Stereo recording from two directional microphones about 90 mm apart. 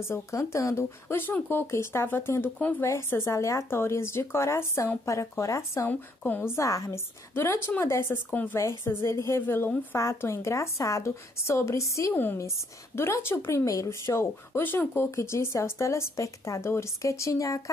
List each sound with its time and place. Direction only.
0.0 s speech: 35° left (ahead or behind)
5.9 s speech: 20° left (ahead or behind)
6.5 s speech: 35° left (ahead or behind)
8.3 s speech: 20° left (ahead or behind)
8.5 s speech: 30° left (ahead or behind)
12.1 s speech: 25° left (ahead or behind); by 17.6 s 40° left (ahead or behind)